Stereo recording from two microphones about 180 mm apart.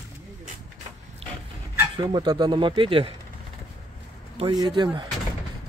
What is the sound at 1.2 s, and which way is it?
Dog, 35° right (ahead or behind).